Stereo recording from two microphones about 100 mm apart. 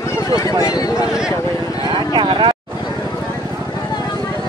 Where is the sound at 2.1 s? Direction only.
60° right (ahead or behind).